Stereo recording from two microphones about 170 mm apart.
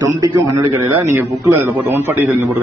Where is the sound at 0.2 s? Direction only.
20° right (ahead or behind).